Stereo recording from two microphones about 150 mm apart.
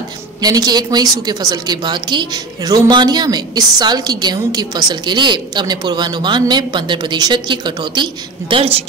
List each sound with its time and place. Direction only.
0.4 s a woman's voice: 25° right (ahead or behind)